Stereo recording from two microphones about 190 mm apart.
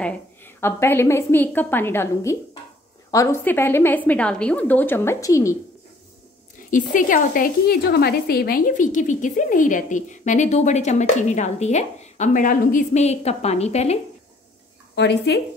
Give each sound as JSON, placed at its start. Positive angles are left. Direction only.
{"t": 0.0, "sound": "a woman's voice", "side_deg": 10}
{"t": 6.7, "sound": "a woman's voice", "side_deg": 45}
{"t": 15.0, "sound": "a woman's voice", "side_deg": 65}